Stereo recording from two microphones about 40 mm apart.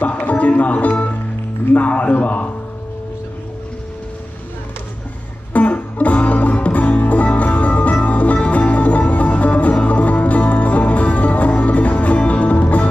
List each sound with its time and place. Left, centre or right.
0.2 s a man's voice: left
5.5 s music: left